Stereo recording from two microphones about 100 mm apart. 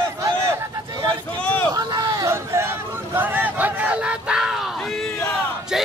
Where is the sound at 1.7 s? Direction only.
35° right (ahead or behind).